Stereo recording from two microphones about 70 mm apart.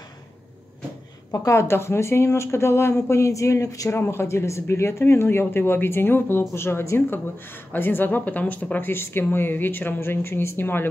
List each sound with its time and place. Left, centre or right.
1.3 s speech: left
4.0 s speech: left
7.7 s speech: left